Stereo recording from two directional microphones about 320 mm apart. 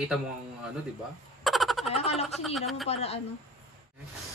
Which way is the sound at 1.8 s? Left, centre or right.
Centre.